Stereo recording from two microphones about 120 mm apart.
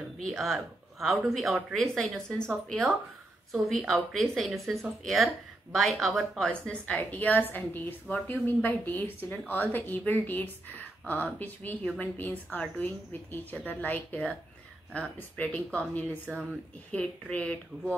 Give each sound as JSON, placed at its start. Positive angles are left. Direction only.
{"t": 0.2, "sound": "speech", "side_deg": 0}
{"t": 3.6, "sound": "speech", "side_deg": 0}